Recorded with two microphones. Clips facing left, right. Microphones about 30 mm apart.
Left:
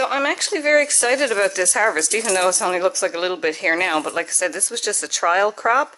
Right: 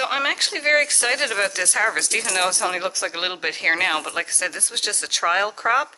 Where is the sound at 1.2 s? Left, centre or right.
Centre.